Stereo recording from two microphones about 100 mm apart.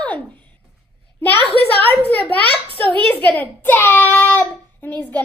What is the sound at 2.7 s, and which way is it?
Speech, 60° right (ahead or behind).